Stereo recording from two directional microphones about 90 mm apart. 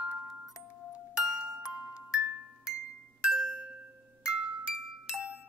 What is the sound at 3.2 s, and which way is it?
Music, 10° right (ahead or behind).